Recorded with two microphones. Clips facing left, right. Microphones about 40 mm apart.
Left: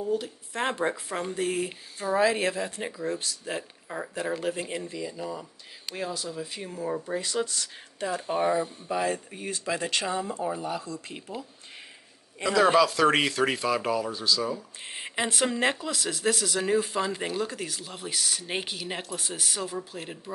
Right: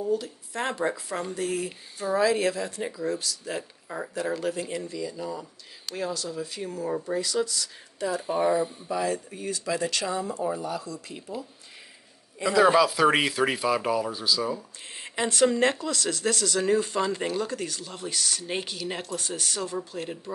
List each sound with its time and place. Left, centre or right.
0.1 s speech: left; by 6.4 s centre
6.4 s speech: left
7.2 s speech: left
8.3 s speech: centre
8.8 s speech: left
12.6 s speech: centre
14.9 s speech: left; by 20.3 s centre